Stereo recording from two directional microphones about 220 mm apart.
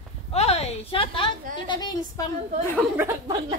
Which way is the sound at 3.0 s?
10° right (ahead or behind).